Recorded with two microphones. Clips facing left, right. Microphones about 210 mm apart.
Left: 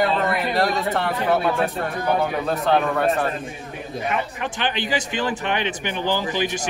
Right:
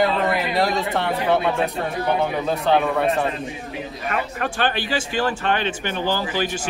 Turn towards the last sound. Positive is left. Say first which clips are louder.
# even
turn(degrees=15)  # may be behind; listen again after turning